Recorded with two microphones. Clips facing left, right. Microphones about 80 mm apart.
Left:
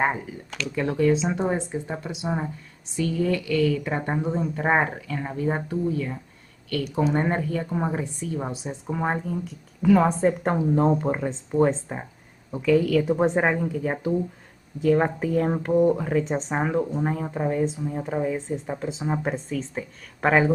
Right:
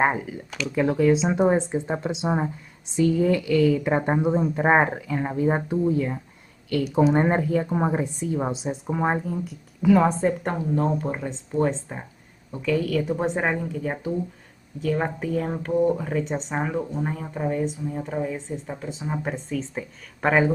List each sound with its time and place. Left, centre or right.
0.7 s a woman's voice: centre
1.1 s speech: centre
6.8 s a woman's voice: centre
10.5 s speech: centre
13.5 s a woman's voice: centre
15.9 s speech: centre
19.5 s a woman's voice: centre